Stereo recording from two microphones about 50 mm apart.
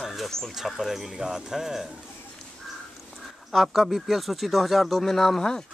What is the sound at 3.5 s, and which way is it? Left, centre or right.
Speech, centre.